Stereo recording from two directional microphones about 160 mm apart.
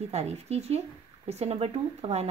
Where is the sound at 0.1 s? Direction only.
40° right (ahead or behind).